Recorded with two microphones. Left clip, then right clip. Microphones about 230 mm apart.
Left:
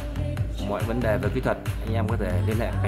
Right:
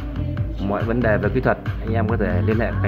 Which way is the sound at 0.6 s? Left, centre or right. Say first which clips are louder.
Right 5 dB; centre.